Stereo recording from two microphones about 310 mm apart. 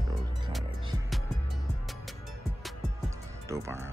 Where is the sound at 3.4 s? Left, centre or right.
Centre.